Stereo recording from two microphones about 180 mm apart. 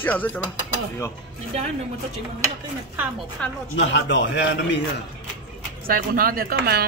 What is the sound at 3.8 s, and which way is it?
Speech, 90° left.